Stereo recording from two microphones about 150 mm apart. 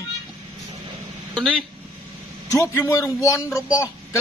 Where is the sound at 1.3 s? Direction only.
5° left (ahead or behind).